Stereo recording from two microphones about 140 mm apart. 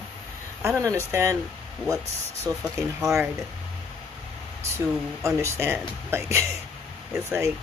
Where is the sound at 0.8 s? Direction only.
20° right (ahead or behind).